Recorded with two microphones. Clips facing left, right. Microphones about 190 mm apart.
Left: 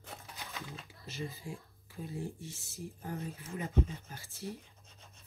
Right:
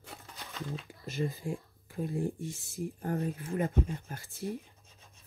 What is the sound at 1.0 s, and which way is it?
Speech, 50° right (ahead or behind).